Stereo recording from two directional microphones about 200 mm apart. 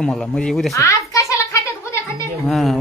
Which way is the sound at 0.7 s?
15° left (ahead or behind).